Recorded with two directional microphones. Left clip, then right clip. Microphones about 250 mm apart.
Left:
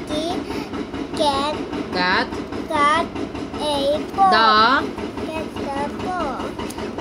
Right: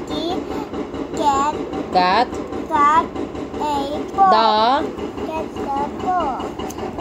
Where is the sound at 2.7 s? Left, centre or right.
Centre.